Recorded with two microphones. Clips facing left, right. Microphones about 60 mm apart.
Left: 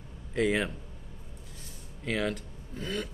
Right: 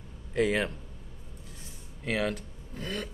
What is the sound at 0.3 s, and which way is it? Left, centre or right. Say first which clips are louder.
Speech: right 1 dB; centre.